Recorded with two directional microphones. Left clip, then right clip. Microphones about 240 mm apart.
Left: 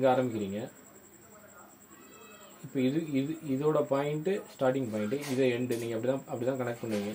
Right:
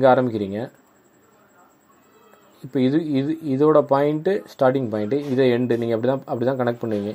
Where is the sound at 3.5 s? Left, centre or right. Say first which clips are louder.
Right 12 dB; right.